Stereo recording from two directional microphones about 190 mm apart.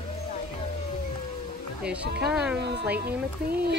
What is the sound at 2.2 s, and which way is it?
Speech, 5° right (ahead or behind).